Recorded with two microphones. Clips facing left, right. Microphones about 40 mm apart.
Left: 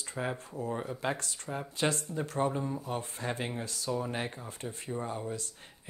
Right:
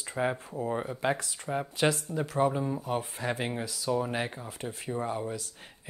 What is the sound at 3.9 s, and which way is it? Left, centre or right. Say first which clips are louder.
Speech: right 4 dB; right.